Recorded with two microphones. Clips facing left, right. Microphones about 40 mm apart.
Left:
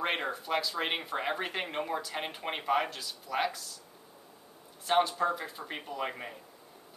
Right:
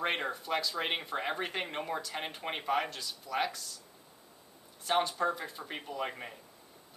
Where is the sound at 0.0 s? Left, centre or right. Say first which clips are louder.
Left 1 dB; centre.